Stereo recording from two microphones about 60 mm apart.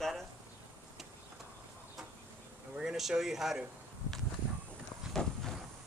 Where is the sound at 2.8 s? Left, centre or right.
Centre.